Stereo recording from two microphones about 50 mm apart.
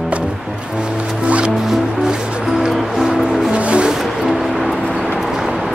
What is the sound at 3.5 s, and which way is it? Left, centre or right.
Music, right.